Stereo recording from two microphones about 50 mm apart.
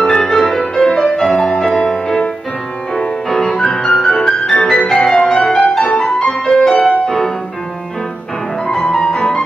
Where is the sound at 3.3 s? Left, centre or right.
Centre.